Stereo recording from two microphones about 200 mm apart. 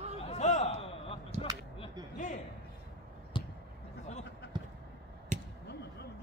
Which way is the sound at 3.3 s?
25° left (ahead or behind).